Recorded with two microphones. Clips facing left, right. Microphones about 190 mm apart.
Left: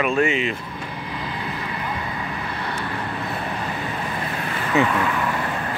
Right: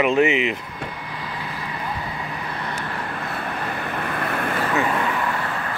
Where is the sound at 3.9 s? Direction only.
60° right (ahead or behind).